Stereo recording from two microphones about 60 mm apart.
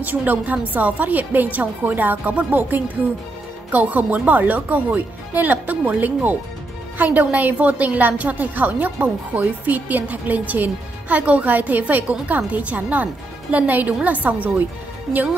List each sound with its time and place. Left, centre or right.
0.0 s speech: right